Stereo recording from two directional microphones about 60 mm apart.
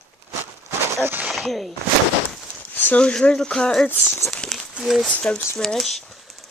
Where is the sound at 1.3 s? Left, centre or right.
Centre.